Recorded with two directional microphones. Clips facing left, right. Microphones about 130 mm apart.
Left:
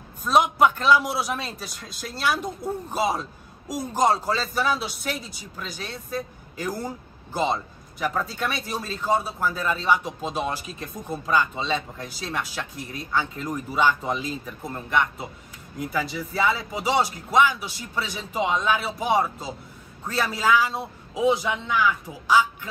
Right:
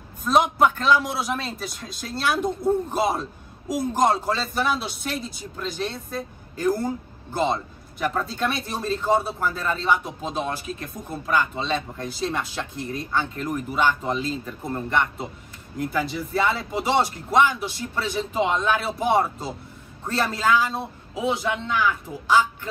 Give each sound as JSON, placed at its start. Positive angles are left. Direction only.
{"t": 0.2, "sound": "a man's voice", "side_deg": 0}
{"t": 10.8, "sound": "speech", "side_deg": 20}
{"t": 11.5, "sound": "a man's voice", "side_deg": 0}
{"t": 13.5, "sound": "speech", "side_deg": 15}
{"t": 14.6, "sound": "a man's voice", "side_deg": 0}
{"t": 20.7, "sound": "speech", "side_deg": 15}
{"t": 21.4, "sound": "a man's voice", "side_deg": 5}